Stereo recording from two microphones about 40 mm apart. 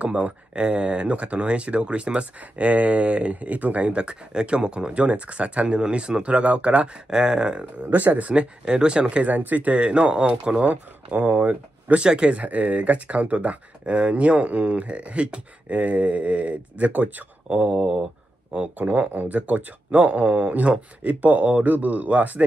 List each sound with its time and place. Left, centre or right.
0.0 s speech: right
7.9 s speech: right
9.3 s speech: right
9.8 s speech: right
10.7 s speech: right
11.9 s speech: right
12.4 s speech: right
17.5 s speech: right
18.8 s speech: right